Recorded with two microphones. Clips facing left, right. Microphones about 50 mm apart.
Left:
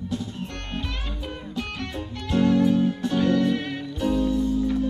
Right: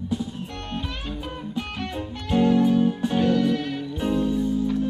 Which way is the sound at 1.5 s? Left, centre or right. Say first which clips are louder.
Right 1 dB; centre.